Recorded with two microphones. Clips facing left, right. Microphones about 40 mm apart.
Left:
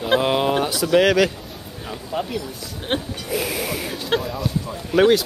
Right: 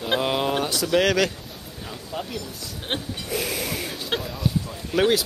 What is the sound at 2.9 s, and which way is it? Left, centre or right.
Sheep, centre.